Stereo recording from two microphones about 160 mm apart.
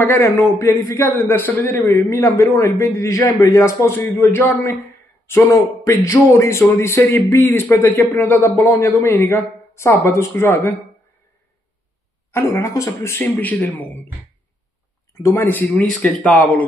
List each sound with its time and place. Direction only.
0.0 s a man's voice: 15° left (ahead or behind)
12.3 s a man's voice: 15° left (ahead or behind)
15.2 s a man's voice: 15° left (ahead or behind)